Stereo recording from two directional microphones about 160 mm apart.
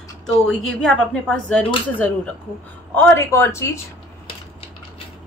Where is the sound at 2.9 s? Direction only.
15° left (ahead or behind).